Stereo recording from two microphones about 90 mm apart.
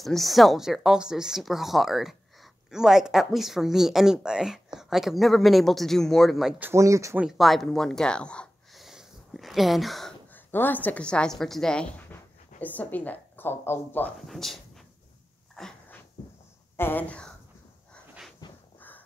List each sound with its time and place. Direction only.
0.0 s speech: centre (ahead or behind)
6.7 s speech: 35° right (ahead or behind)
7.3 s speech: centre (ahead or behind)
8.7 s a sound: centre (ahead or behind)
10.3 s a woman's voice: 20° left (ahead or behind)
12.1 s a woman's voice: 20° left (ahead or behind)
14.2 s speech: centre (ahead or behind)
16.7 s speech: 25° left (ahead or behind)
18.4 s a sound: 55° left (ahead or behind)
18.8 s a sound: 20° left (ahead or behind)